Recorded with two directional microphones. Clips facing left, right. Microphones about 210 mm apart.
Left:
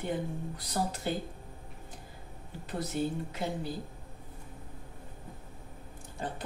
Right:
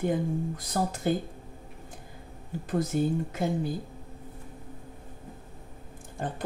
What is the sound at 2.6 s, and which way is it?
Speech, 50° right (ahead or behind).